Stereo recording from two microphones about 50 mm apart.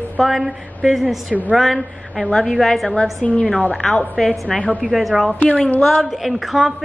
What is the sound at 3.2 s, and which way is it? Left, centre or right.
Speech, left.